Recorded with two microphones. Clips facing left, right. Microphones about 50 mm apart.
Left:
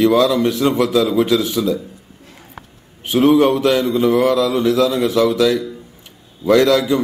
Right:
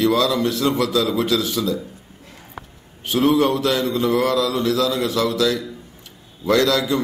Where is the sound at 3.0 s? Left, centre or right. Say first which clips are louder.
Left 5 dB; left.